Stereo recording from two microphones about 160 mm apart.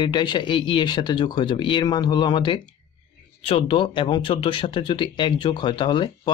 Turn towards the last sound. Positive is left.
turn(degrees=30)  # may be behind; listen again after turning